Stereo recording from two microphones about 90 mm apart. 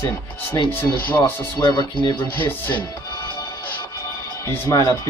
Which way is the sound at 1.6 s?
55° left (ahead or behind).